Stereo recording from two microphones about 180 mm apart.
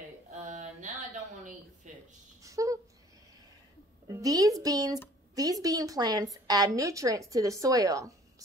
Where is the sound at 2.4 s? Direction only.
20° right (ahead or behind).